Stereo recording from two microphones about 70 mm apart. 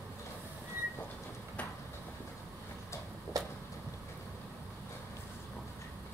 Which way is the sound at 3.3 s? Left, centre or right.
Right.